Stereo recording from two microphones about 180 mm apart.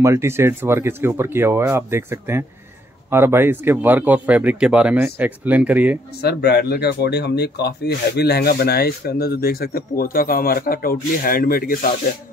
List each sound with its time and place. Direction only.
0.0 s speech: 15° right (ahead or behind)
6.2 s speech: 60° left (ahead or behind)